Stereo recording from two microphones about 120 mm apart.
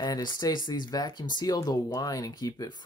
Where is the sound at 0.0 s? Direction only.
35° left (ahead or behind).